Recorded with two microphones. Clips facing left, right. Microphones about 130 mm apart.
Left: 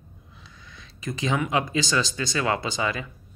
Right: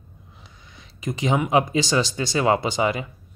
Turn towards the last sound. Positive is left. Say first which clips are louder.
# right 5 dB
turn(degrees=-20)  # may be behind; listen again after turning